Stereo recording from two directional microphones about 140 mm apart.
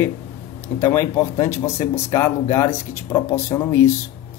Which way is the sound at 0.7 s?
15° left (ahead or behind).